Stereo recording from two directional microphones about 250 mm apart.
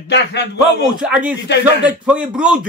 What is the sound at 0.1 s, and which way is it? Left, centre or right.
Speech, left.